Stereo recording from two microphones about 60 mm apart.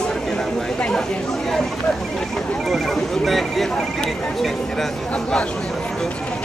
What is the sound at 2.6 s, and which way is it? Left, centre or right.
Speech, centre.